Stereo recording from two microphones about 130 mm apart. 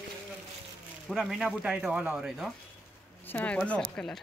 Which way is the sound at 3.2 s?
10° left (ahead or behind).